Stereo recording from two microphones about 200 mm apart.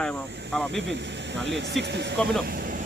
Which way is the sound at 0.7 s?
60° right (ahead or behind).